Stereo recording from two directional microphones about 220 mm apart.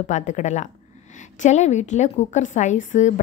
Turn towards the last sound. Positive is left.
turn(degrees=35)  # may be behind; listen again after turning